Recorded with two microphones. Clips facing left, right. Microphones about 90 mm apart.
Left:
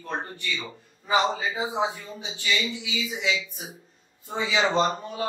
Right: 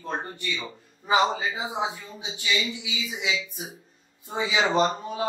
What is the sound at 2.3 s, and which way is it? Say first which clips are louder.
Speech: even; 15° right (ahead or behind).